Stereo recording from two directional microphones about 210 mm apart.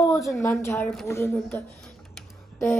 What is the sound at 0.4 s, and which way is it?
Speech, 10° left (ahead or behind).